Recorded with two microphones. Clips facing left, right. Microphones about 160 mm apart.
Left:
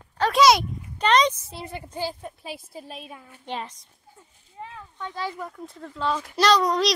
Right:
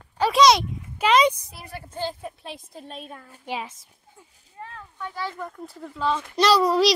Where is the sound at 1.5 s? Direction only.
25° left (ahead or behind).